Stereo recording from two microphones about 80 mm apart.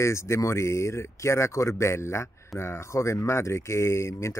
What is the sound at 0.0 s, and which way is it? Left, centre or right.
Speech, left.